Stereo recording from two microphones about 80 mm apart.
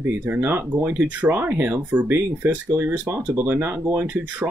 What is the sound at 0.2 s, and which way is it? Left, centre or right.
Speech, right.